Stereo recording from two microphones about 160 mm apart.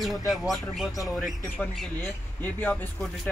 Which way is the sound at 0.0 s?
Centre (ahead or behind).